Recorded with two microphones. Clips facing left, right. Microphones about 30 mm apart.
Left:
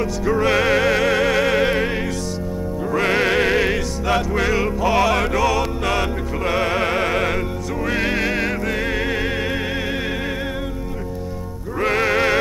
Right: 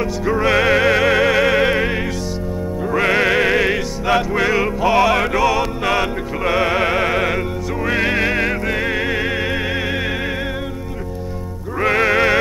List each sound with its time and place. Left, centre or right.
0.0 s music: centre
2.9 s music: centre
11.8 s music: right